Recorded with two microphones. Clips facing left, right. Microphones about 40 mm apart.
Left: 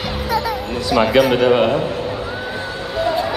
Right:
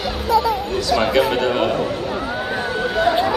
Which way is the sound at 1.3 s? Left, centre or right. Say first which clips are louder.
Left 4 dB; centre.